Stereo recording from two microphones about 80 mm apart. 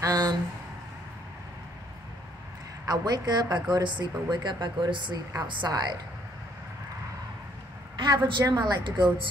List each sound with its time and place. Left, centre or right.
0.0 s speech: right
2.8 s a woman's voice: right
3.8 s speech: right
5.7 s a woman's voice: right
8.0 s speech: right
8.5 s speech: right